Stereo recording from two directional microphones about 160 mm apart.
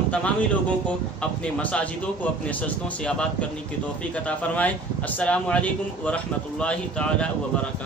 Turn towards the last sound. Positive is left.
turn(degrees=5)  # may be behind; listen again after turning